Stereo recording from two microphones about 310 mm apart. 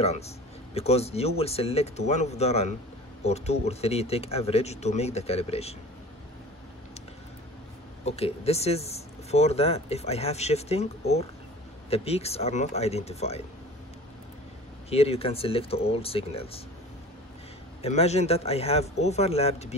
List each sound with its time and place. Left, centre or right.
0.7 s speech: centre
8.0 s speech: centre
14.9 s speech: centre
17.8 s speech: left